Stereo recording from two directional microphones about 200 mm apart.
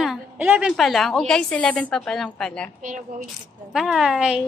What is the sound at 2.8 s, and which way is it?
Speech, 40° right (ahead or behind).